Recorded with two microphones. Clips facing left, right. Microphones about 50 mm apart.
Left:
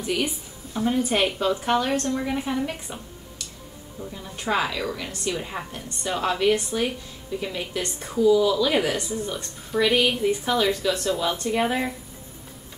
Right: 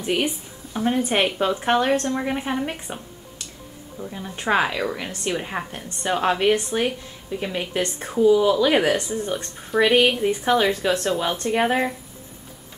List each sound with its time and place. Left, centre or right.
0.0 s a woman's voice: right
11.5 s speech: centre